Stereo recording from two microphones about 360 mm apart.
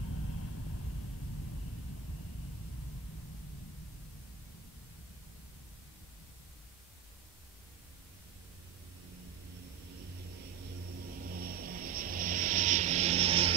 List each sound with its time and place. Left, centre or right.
11.2 s vehicle: right